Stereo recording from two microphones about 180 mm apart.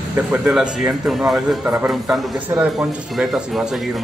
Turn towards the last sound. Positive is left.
turn(degrees=-5)  # may be behind; listen again after turning